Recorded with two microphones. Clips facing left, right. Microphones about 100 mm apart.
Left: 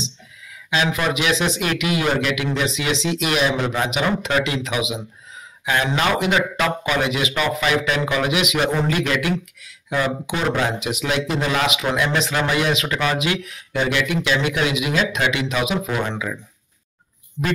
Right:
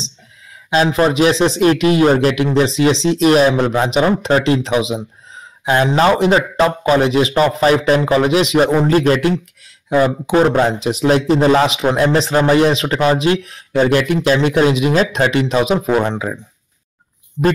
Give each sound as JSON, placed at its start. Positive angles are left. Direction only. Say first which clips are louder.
{"t": 0.9, "sound": "a man's voice", "louder": "right 8 dB", "side_deg": -35}
{"t": 17.4, "sound": "a man's voice", "louder": "right 9 dB", "side_deg": -30}